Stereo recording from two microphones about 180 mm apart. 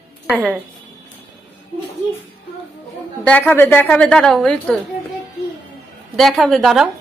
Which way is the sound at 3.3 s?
10° left (ahead or behind).